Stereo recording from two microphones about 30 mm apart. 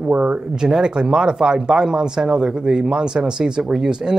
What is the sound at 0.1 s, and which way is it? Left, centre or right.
Speech, right.